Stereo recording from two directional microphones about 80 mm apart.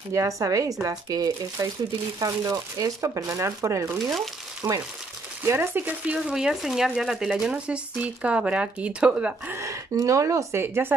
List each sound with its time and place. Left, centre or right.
0.1 s speech: right
4.0 s speech: centre
4.6 s speech: right
5.4 s speech: right
6.2 s speech: centre
9.6 s speech: right
10.6 s speech: right